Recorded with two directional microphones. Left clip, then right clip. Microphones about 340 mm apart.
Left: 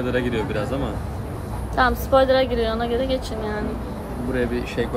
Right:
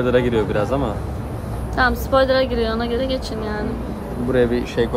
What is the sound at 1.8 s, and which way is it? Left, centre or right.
A woman's voice, centre.